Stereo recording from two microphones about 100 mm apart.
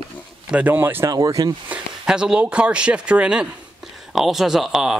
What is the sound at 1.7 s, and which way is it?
Speech, 10° right (ahead or behind).